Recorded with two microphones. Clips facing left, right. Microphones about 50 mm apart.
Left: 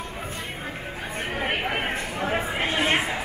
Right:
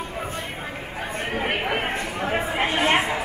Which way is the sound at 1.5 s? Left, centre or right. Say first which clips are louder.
Right 1 dB; right.